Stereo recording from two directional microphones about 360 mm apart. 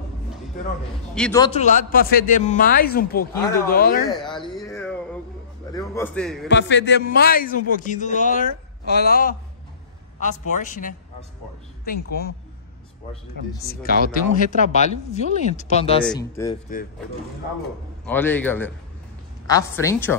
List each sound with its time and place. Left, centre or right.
1.1 s a man's voice: centre; by 4.0 s left
4.1 s speech: centre
4.6 s a sound: centre
5.8 s a man's voice: centre
6.5 s a man's voice: left
10.5 s a man's voice: left
13.7 s a man's voice: left
18.0 s a man's voice: centre